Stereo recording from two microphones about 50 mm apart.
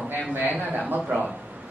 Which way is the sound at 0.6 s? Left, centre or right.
Right.